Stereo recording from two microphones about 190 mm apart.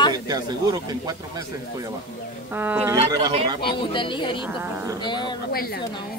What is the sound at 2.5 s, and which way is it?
Speech, 10° right (ahead or behind).